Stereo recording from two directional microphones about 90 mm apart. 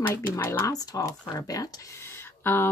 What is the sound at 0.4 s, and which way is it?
Speech, 30° left (ahead or behind).